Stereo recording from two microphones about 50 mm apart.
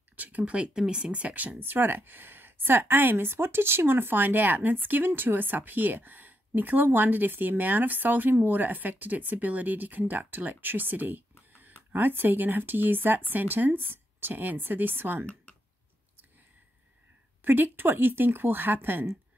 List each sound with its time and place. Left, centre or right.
0.1 s speech: right; by 1.1 s centre
1.1 s speech: right
17.4 s speech: right